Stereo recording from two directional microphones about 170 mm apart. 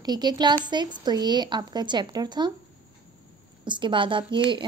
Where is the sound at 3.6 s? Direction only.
30° right (ahead or behind).